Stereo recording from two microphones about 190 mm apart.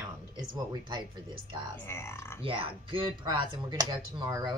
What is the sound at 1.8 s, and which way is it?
Speech, 15° left (ahead or behind).